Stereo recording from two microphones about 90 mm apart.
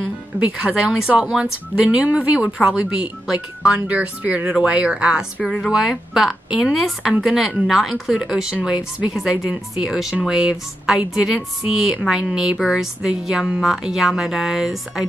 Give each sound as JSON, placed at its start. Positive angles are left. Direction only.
{"t": 0.4, "sound": "a woman's voice", "side_deg": -10}